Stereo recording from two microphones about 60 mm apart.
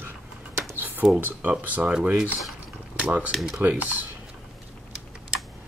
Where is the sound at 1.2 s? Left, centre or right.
Right.